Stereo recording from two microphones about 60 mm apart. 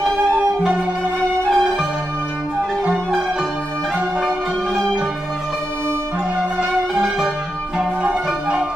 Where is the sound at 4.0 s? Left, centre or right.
Right.